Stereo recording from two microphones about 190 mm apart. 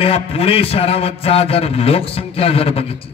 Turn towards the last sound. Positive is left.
turn(degrees=30)  # may be behind; listen again after turning